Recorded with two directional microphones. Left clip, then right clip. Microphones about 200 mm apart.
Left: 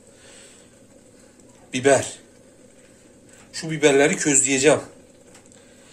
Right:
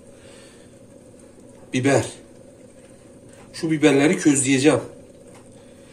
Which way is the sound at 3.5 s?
40° left (ahead or behind).